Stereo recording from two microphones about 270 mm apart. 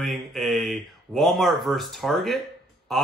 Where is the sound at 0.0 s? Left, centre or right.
Centre.